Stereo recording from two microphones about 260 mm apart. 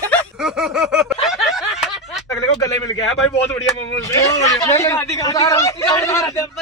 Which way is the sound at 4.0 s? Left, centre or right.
Centre.